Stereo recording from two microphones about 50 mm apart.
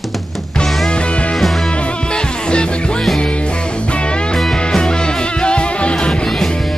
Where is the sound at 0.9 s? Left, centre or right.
Left.